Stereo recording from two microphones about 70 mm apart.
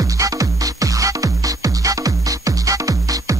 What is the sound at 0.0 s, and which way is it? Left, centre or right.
Music, right.